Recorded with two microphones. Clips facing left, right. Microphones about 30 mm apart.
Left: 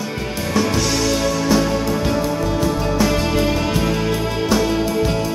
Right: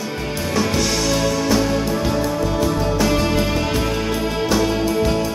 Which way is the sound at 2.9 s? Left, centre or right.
Centre.